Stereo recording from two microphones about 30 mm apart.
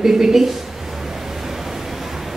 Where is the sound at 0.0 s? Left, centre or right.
Centre.